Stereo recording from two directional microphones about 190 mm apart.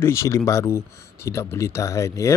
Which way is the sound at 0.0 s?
15° left (ahead or behind).